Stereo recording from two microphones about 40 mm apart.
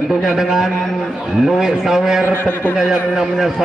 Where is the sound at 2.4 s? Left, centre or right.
Left.